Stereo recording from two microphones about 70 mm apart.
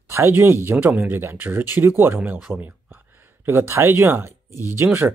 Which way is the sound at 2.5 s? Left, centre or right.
Right.